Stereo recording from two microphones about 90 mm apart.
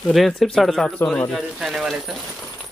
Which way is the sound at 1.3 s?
5° right (ahead or behind).